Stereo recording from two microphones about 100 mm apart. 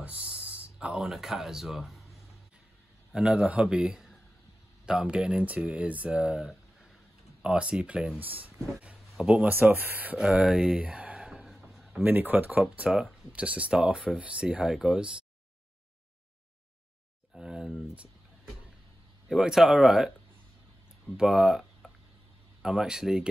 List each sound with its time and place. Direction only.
0.0 s speech: 15° right (ahead or behind)
3.2 s speech: 10° right (ahead or behind)
9.1 s speech: 5° right (ahead or behind)
9.5 s speech: 20° right (ahead or behind); by 12.0 s centre (ahead or behind)
12.0 s speech: 20° right (ahead or behind)
17.3 s a sound: 5° right (ahead or behind)
19.2 s speech: 5° right (ahead or behind)
21.2 s speech: 5° right (ahead or behind)